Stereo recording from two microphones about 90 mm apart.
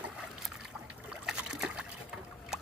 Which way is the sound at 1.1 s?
10° right (ahead or behind).